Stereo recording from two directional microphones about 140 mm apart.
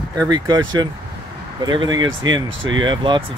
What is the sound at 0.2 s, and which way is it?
Speech, 30° right (ahead or behind).